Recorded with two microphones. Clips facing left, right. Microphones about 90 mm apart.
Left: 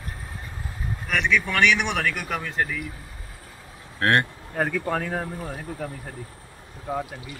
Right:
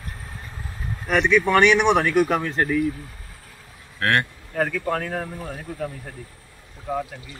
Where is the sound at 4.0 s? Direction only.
30° left (ahead or behind).